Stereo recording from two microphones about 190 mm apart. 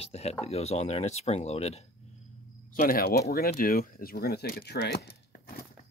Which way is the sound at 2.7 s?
50° left (ahead or behind).